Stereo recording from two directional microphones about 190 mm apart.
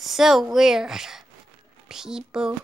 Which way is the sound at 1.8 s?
Centre (ahead or behind).